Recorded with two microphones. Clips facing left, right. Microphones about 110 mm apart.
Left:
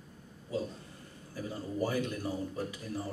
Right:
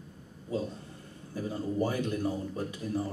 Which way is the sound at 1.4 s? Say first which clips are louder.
Right 3 dB; 20° right (ahead or behind).